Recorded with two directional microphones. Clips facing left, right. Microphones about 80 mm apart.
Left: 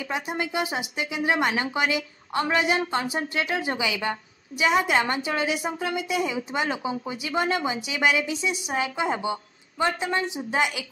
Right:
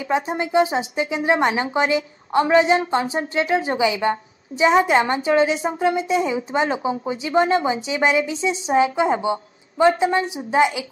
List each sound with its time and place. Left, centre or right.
0.0 s speech: right